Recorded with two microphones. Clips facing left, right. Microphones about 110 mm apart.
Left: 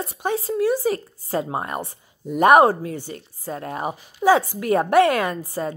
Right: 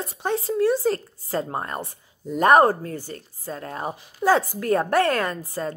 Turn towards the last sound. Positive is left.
turn(degrees=10)  # may be behind; listen again after turning